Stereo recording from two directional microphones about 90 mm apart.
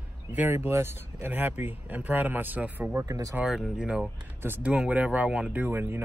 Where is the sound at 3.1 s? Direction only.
35° right (ahead or behind).